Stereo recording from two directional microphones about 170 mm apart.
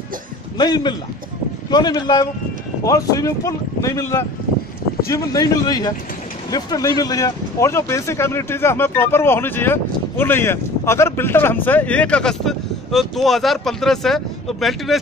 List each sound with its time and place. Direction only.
0.6 s speech: 25° left (ahead or behind); by 15.0 s centre (ahead or behind)